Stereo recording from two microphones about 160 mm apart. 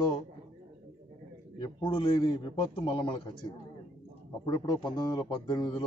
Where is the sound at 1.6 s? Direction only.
30° left (ahead or behind).